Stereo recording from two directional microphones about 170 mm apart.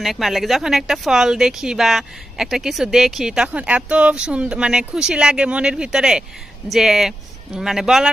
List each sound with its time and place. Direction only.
0.0 s speech: centre (ahead or behind)